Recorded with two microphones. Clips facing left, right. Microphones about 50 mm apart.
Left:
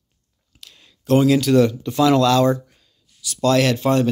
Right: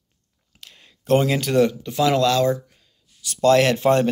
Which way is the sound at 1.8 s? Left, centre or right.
Centre.